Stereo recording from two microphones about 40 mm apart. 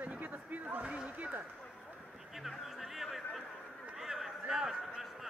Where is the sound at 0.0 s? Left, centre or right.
Right.